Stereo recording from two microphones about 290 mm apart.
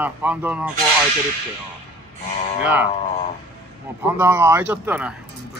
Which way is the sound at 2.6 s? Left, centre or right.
Centre.